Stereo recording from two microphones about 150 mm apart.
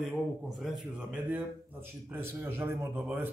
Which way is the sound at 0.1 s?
5° right (ahead or behind).